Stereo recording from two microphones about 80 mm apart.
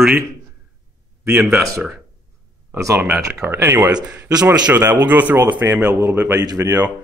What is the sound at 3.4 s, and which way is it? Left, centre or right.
Speech, right.